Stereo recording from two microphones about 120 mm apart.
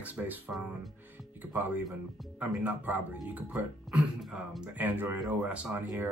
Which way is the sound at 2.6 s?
15° right (ahead or behind).